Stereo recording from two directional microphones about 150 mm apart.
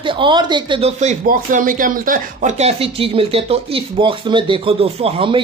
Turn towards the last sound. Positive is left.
turn(degrees=-40)  # may be behind; listen again after turning